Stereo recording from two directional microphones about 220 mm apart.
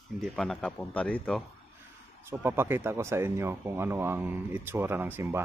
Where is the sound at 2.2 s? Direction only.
10° right (ahead or behind).